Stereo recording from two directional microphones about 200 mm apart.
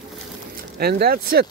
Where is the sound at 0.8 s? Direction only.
50° right (ahead or behind).